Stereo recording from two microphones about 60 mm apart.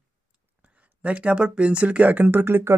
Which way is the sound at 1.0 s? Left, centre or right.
Centre.